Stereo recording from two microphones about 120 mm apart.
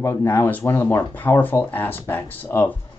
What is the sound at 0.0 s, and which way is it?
Speech, 20° left (ahead or behind).